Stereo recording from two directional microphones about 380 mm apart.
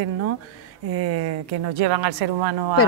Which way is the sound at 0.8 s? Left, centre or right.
Right.